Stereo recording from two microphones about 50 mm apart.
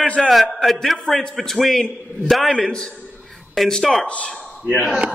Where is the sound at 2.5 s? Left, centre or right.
Centre.